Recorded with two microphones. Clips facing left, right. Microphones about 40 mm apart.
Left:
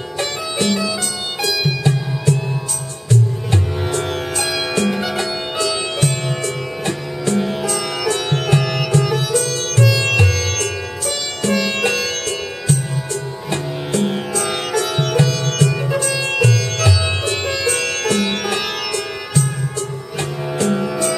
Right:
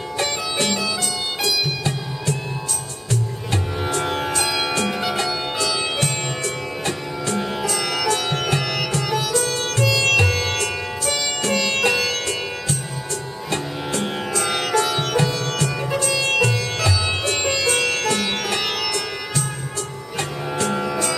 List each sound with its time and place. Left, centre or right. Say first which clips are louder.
0.2 s music: left 2 dB; centre
3.8 s music: left 1 dB; centre
9.5 s music: left 1 dB; centre
9.8 s music: left 1 dB; centre
10.3 s sitar: even; centre
10.6 s music: left 1 dB; centre